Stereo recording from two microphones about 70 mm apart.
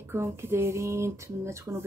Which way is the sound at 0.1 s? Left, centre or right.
Right.